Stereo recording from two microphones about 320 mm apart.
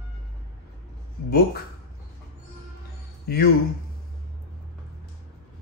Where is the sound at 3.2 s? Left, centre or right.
Left.